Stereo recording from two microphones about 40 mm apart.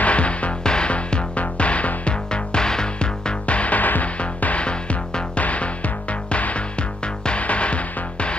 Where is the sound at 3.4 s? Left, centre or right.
Left.